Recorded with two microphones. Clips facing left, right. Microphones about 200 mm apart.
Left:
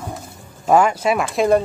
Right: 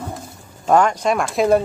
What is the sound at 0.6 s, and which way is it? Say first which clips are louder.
Speech: left 1 dB; 5° left (ahead or behind).